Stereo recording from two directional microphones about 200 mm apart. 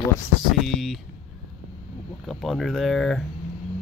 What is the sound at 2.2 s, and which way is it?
Speech, centre (ahead or behind).